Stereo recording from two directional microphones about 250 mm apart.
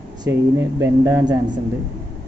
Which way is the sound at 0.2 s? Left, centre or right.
Centre.